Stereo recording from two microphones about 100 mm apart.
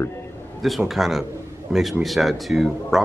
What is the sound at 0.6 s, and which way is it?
Speech, centre (ahead or behind).